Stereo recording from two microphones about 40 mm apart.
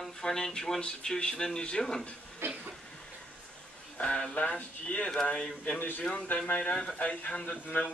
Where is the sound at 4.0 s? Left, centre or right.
Left.